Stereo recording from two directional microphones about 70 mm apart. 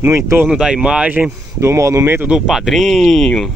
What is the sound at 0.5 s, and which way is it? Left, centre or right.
Speech, centre.